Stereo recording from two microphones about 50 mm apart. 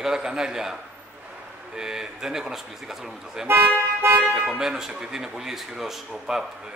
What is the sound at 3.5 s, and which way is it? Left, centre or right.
Speech, right.